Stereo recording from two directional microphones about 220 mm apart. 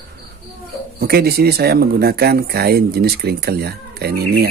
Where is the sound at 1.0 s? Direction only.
45° right (ahead or behind).